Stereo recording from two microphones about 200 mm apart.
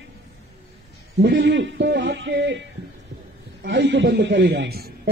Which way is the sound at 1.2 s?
60° right (ahead or behind).